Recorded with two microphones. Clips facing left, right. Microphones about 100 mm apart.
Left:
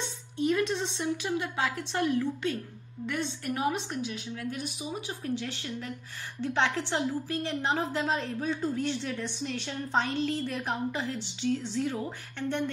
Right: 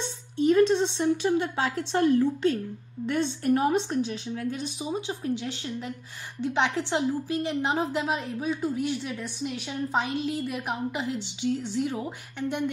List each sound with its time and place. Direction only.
0.4 s a woman's voice: 30° right (ahead or behind); by 12.6 s 15° right (ahead or behind)